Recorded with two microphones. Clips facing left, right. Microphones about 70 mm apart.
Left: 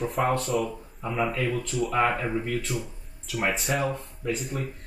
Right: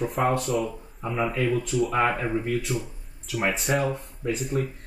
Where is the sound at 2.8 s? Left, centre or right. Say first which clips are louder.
Even; centre.